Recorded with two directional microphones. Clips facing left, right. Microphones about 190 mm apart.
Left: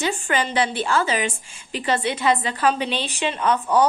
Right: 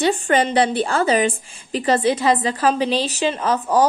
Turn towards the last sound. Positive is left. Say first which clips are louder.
# right 1 dB
turn(degrees=-35)  # may be behind; listen again after turning